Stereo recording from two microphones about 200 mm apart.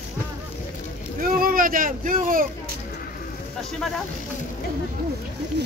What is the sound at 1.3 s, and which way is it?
Speech, 45° right (ahead or behind).